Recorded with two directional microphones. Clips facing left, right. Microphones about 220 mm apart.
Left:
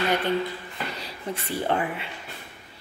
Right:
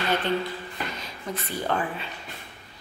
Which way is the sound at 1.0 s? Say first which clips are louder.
Left 1 dB; 30° left (ahead or behind).